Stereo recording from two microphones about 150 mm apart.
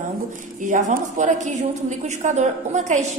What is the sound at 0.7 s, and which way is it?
A woman's voice, 55° right (ahead or behind).